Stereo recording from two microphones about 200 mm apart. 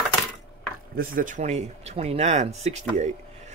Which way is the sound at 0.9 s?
40° right (ahead or behind).